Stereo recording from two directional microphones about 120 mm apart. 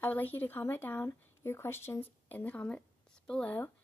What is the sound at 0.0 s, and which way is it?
Speech, 15° left (ahead or behind).